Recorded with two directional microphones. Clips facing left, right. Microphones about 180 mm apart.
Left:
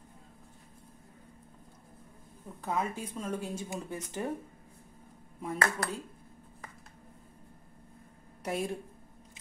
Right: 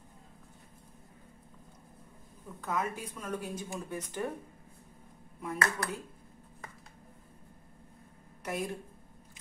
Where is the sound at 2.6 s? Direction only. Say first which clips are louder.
Left 1 dB; 30° left (ahead or behind).